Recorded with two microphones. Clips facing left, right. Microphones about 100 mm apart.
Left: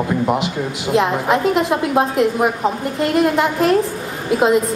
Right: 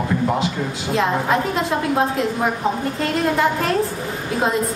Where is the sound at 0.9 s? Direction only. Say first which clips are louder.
Left 3 dB; 20° left (ahead or behind).